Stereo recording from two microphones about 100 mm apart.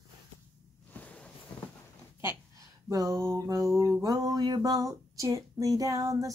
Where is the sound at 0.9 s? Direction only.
15° left (ahead or behind).